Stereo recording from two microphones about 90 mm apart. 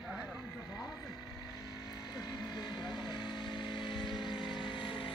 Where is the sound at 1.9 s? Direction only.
50° left (ahead or behind).